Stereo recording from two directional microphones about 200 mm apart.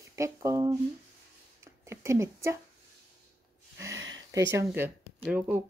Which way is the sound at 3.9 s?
70° right (ahead or behind).